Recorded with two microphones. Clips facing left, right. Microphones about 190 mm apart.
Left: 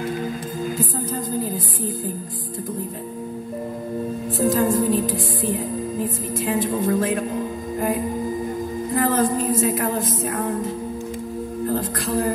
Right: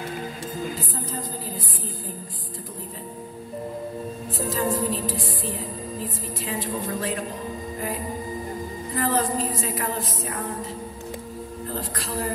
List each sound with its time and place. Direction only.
4.4 s a woman's voice: 50° left (ahead or behind)
8.9 s music: 50° left (ahead or behind)
11.6 s speech: 50° left (ahead or behind)